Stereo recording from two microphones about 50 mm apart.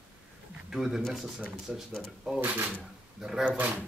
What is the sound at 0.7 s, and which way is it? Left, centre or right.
Speech, centre.